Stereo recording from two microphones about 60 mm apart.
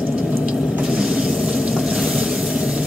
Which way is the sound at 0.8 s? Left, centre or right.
Centre.